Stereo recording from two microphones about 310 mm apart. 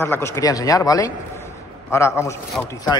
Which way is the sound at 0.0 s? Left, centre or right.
Centre.